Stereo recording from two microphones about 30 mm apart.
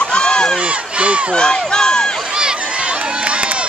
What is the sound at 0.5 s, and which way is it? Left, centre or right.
Crowd, right.